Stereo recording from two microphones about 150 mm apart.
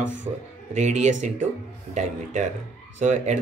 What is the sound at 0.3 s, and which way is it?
Speech, 40° right (ahead or behind).